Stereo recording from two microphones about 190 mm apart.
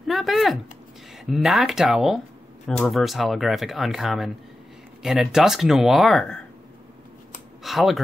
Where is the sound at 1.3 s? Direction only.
Centre (ahead or behind).